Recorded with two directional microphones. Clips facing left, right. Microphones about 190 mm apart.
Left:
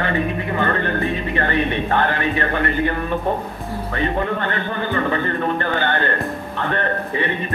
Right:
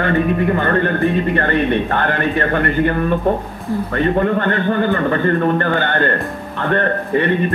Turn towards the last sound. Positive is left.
turn(degrees=-50)  # may be behind; listen again after turning